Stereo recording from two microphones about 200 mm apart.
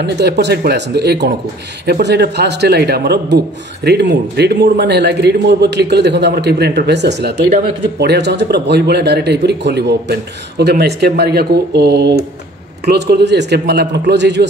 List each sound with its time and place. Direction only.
0.0 s a man's voice: 55° right (ahead or behind)